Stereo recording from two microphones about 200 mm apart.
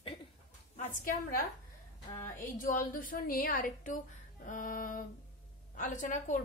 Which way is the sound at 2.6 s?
45° left (ahead or behind).